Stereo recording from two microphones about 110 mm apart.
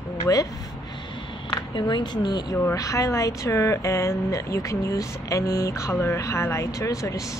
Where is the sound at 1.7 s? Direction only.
40° left (ahead or behind).